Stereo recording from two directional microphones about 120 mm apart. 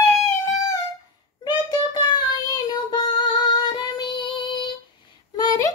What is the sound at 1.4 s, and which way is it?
Child singing, 35° left (ahead or behind).